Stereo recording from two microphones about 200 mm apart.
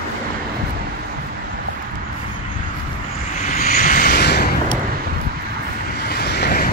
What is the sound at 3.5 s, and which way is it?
Vehicle, 35° left (ahead or behind).